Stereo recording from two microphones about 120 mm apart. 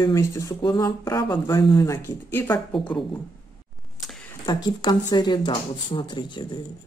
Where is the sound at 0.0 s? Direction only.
25° left (ahead or behind).